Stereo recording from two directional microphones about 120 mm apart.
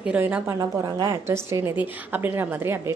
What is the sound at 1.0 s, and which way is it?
A woman's voice, 25° right (ahead or behind).